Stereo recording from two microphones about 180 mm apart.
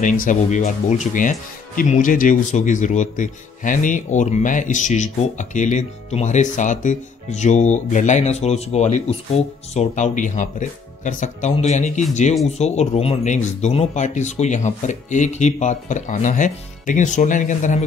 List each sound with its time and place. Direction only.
0.0 s speech: 45° left (ahead or behind)